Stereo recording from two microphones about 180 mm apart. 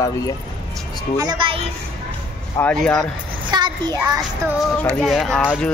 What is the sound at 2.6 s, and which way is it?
Speech, 5° left (ahead or behind).